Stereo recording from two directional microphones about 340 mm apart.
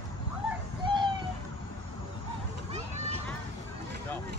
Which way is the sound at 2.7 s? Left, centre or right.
Centre.